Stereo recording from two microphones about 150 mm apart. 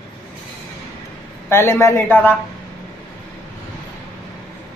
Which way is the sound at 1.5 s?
15° left (ahead or behind).